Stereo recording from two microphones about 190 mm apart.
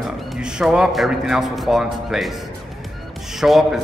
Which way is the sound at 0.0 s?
Centre (ahead or behind).